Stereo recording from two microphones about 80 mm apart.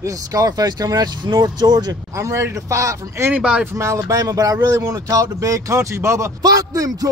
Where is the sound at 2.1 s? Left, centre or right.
Right.